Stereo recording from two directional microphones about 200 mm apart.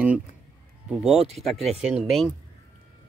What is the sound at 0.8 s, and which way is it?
Speech, centre (ahead or behind).